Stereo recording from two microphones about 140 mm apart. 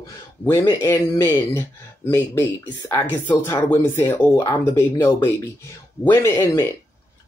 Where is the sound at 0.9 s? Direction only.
15° left (ahead or behind).